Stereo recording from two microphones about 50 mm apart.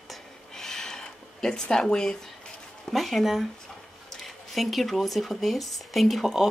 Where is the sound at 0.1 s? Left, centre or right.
Centre.